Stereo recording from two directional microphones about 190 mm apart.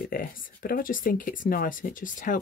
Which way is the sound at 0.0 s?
50° left (ahead or behind).